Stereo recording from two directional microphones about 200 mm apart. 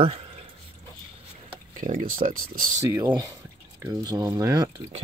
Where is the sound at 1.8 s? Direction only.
40° right (ahead or behind).